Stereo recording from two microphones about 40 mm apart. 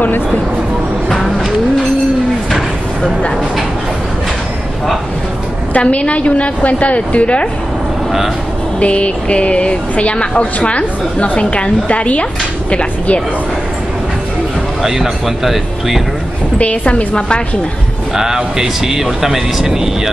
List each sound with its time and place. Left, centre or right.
1.0 s a sound: centre
5.7 s speech: left
8.7 s speech: left
14.8 s speech: centre
16.5 s speech: left
18.1 s speech: centre